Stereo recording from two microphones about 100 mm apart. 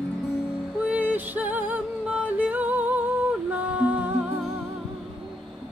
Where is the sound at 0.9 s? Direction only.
15° right (ahead or behind).